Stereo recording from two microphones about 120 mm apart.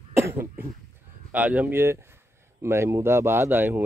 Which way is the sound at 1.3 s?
10° right (ahead or behind).